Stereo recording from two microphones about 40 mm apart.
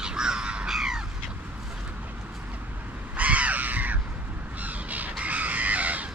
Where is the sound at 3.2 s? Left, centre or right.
Right.